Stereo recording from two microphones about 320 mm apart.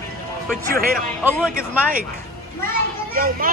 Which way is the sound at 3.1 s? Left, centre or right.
Right.